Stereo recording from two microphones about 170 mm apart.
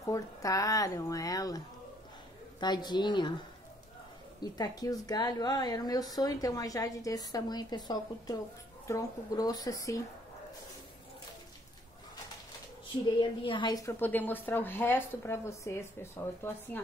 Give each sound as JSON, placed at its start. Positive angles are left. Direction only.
{"t": 0.0, "sound": "a woman's voice", "side_deg": 20}
{"t": 2.6, "sound": "a woman's voice", "side_deg": 25}
{"t": 4.4, "sound": "a woman's voice", "side_deg": 20}
{"t": 13.4, "sound": "speech", "side_deg": 30}